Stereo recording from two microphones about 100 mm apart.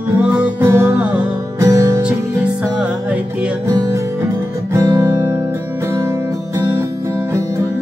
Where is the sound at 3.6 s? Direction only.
35° right (ahead or behind).